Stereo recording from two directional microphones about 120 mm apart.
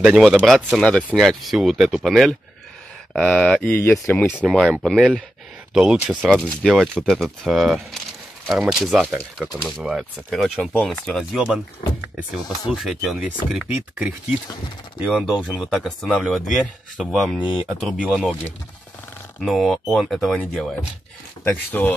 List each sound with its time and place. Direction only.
0.0 s speech: 5° right (ahead or behind); by 4.4 s 15° left (ahead or behind)
4.4 s speech: 5° right (ahead or behind)
12.7 s speech: centre (ahead or behind)
15.0 s speech: centre (ahead or behind)
19.4 s speech: centre (ahead or behind)
21.8 s speech: 10° left (ahead or behind)